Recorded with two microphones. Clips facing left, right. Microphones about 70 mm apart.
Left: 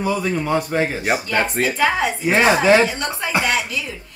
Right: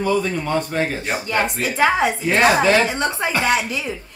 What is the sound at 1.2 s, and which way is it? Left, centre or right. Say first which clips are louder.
Speech: left 1 dB; right.